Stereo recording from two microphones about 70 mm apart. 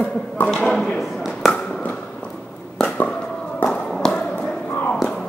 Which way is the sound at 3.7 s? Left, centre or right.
Centre.